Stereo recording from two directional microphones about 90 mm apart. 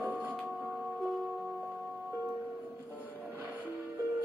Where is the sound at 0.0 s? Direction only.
20° right (ahead or behind).